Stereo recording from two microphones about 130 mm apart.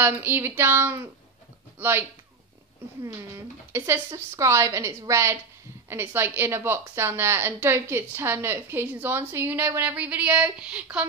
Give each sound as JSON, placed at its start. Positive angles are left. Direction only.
{"t": 0.0, "sound": "a woman's voice", "side_deg": -15}
{"t": 3.7, "sound": "a woman's voice", "side_deg": -20}